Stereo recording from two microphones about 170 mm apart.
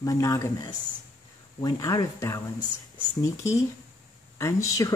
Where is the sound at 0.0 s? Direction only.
20° left (ahead or behind).